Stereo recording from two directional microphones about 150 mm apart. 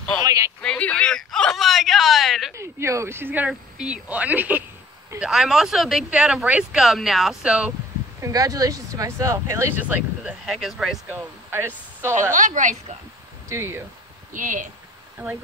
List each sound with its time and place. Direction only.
0.2 s a sound: 25° right (ahead or behind)
0.6 s a sound: 10° left (ahead or behind)
2.5 s speech: 20° right (ahead or behind)
8.2 s speech: 25° right (ahead or behind); by 11.0 s centre (ahead or behind)
11.1 s speech: 15° right (ahead or behind)
12.4 s speech: 60° right (ahead or behind)
13.5 s speech: 15° right (ahead or behind)
14.3 s speech: 60° right (ahead or behind)
15.2 s speech: 10° right (ahead or behind)